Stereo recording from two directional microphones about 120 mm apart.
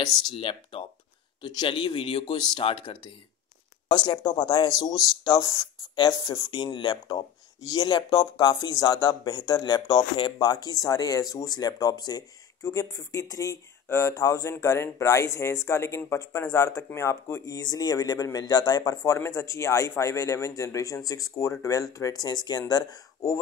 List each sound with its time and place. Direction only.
0.3 s speech: 45° left (ahead or behind)
1.4 s speech: 35° left (ahead or behind)
4.9 s speech: centre (ahead or behind)
5.2 s speech: 35° left (ahead or behind)